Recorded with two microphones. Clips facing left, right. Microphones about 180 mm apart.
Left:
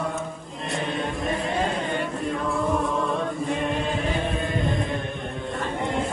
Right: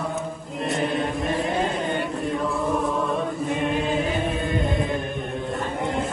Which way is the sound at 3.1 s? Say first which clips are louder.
Right 1 dB; centre (ahead or behind).